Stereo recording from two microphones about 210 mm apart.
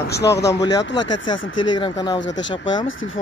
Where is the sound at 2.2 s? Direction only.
60° left (ahead or behind).